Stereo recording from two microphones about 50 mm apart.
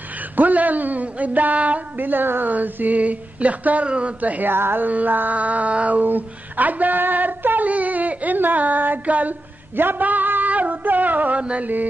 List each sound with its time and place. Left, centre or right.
0.4 s speech: right
4.5 s speech: right
4.8 s speech: right
11.4 s carnatic music: right